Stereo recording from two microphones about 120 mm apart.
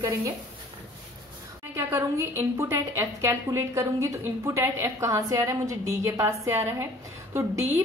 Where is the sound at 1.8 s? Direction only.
20° right (ahead or behind).